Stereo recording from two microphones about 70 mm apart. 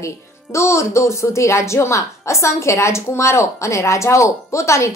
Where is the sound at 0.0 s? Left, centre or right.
Left.